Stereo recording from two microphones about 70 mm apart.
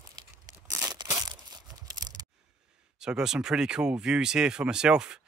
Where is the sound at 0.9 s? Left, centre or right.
Right.